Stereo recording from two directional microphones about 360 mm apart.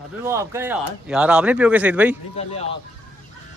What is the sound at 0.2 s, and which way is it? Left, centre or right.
Speech, centre.